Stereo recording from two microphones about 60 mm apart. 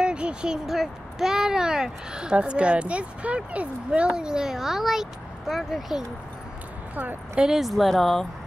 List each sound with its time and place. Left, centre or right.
0.0 s a sound: centre
0.7 s speech: centre
7.3 s speech: centre